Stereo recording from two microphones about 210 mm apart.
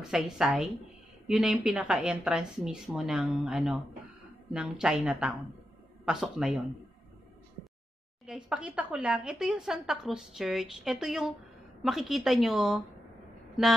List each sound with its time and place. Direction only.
0.4 s a woman's voice: 5° right (ahead or behind)
8.3 s a woman's voice: 5° right (ahead or behind)